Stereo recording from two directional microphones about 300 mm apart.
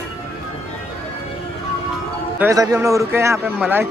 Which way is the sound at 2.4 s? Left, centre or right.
Centre.